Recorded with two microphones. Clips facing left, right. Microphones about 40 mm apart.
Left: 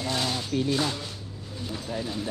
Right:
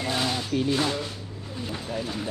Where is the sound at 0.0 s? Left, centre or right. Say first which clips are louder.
Right 2 dB; right.